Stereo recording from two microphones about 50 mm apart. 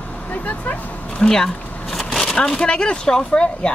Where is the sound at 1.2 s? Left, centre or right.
Centre.